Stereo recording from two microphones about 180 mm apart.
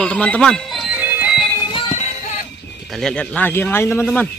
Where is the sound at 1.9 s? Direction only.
40° left (ahead or behind).